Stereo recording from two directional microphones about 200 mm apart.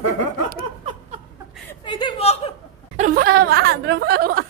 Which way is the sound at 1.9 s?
25° left (ahead or behind).